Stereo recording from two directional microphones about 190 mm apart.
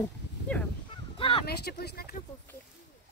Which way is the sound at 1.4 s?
55° left (ahead or behind).